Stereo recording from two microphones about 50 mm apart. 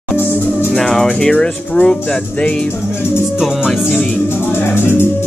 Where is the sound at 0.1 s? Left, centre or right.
Left.